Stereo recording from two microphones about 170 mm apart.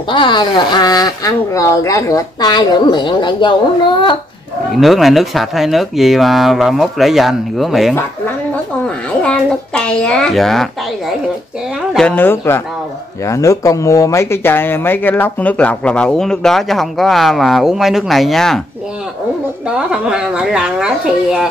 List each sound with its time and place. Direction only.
0.1 s speech: 30° left (ahead or behind)
4.7 s speech: centre (ahead or behind)
19.9 s speech: 5° right (ahead or behind)